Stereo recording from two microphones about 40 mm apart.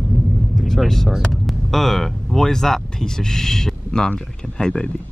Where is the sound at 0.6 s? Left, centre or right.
Centre.